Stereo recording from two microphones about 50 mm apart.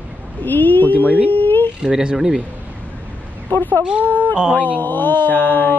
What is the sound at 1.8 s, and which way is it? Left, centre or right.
Speech, centre.